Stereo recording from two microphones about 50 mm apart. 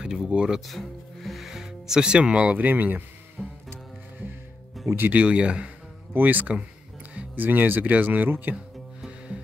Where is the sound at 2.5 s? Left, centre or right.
Right.